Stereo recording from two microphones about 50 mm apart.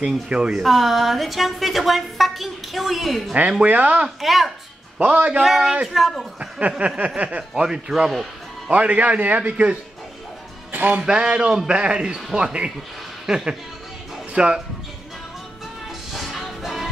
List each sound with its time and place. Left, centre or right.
0.3 s speech: centre
0.6 s speech: centre
3.6 s speech: right
4.2 s speech: centre
4.9 s speech: right
5.4 s speech: centre
6.8 s speech: right
7.2 s speech: right
8.6 s speech: right
10.7 s music: right
11.0 s speech: centre
16.1 s music: centre